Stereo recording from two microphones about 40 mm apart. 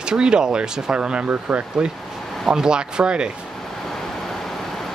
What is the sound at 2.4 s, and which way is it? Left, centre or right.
Speech, centre.